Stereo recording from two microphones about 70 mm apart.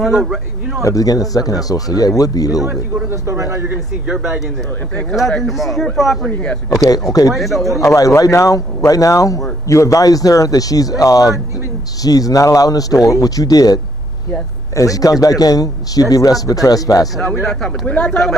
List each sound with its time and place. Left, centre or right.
0.0 s speech: centre
0.8 s a man's voice: left
2.6 s speech: centre
3.3 s a man's voice: right
4.1 s speech: centre
5.4 s speech: centre
7.1 s a man's voice: left
7.3 s speech: centre
7.8 s a man's voice: left
14.8 s a man's voice: left
17.4 s speech: centre